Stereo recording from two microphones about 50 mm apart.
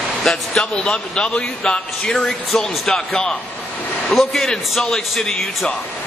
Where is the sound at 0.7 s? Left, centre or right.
Centre.